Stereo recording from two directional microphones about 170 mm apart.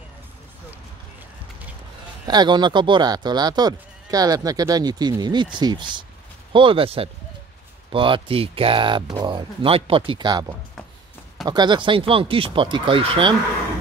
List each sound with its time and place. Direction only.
2.2 s speech: 25° right (ahead or behind)
11.4 s speech: 25° right (ahead or behind)